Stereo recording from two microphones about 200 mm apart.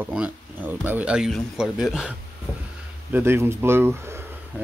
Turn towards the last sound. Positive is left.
turn(degrees=-10)  # may be behind; listen again after turning